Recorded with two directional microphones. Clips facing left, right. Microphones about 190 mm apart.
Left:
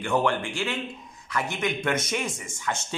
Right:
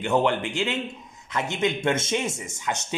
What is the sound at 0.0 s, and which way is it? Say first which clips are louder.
A man's voice: right 2 dB; 20° right (ahead or behind).